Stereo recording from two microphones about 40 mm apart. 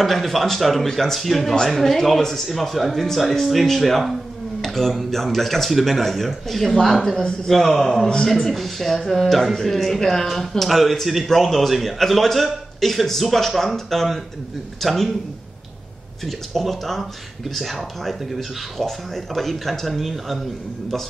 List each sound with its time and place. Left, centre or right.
0.0 s speech: centre
16.3 s speech: centre